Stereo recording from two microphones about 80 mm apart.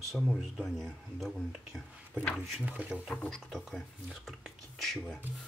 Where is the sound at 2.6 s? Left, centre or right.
Centre.